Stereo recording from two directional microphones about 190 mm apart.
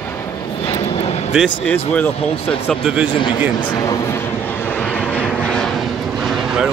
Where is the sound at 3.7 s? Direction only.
20° left (ahead or behind).